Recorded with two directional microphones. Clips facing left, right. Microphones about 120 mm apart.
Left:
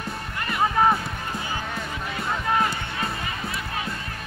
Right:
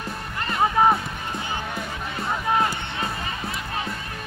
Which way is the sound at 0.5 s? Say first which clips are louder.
Right 2 dB; 15° right (ahead or behind).